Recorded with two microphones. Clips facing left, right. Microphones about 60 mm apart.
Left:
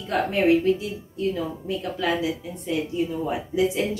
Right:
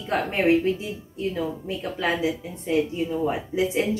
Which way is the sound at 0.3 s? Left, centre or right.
Right.